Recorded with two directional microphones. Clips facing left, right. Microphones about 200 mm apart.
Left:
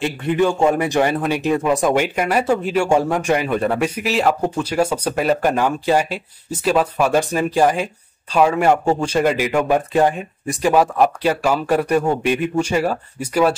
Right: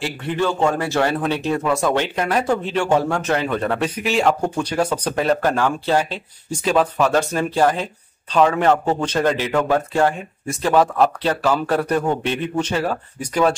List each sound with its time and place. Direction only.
0.0 s speech: 15° left (ahead or behind)